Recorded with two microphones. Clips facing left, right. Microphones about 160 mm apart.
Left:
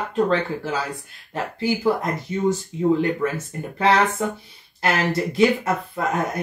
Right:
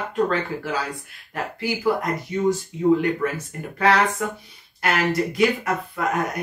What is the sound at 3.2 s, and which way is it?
Speech, 25° left (ahead or behind).